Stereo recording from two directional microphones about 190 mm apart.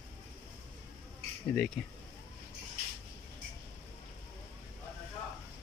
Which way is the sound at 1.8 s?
Centre (ahead or behind).